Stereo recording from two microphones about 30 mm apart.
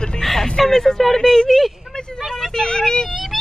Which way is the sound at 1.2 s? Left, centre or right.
Left.